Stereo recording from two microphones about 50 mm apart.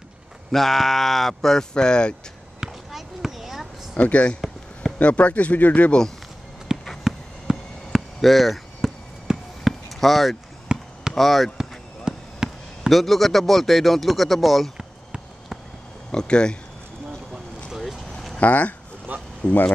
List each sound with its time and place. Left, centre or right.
0.5 s speech: centre
2.6 s a sound: centre
3.9 s speech: left
6.7 s a sound: centre
8.2 s basketball bounce: centre
10.7 s basketball bounce: centre
11.1 s speech: centre
12.1 s fireworks: centre
12.9 s speech: centre
16.1 s speech: centre
17.3 s boat: centre
18.4 s speech: left
19.1 s a sound: right